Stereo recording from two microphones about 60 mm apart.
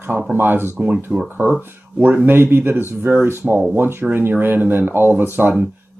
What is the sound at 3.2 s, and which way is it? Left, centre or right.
Speech, right.